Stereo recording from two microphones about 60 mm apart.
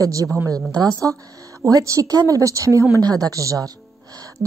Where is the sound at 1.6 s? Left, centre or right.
Right.